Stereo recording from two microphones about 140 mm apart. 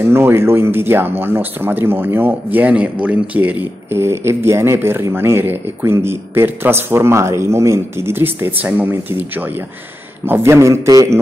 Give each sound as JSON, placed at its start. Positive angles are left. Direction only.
{"t": 0.0, "sound": "a man's voice", "side_deg": -15}